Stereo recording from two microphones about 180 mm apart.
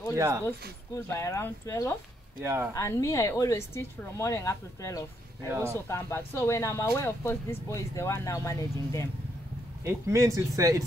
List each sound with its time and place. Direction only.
0.1 s speech: 15° right (ahead or behind)
0.9 s speech: 15° left (ahead or behind)
2.4 s speech: 15° right (ahead or behind)
2.7 s speech: 15° left (ahead or behind)
5.5 s speech: 15° right (ahead or behind)
5.9 s speech: 15° left (ahead or behind)
9.8 s speech: 15° right (ahead or behind)